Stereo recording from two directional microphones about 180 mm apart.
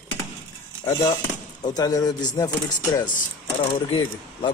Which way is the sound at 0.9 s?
20° left (ahead or behind).